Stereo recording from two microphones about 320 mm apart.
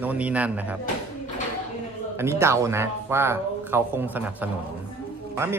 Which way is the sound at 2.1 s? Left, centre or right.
Centre.